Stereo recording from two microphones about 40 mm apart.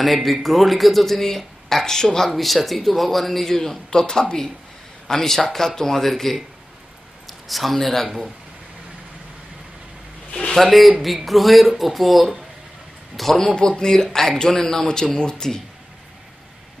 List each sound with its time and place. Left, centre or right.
0.0 s a man's voice: centre
10.5 s a man's voice: centre
13.6 s a man's voice: centre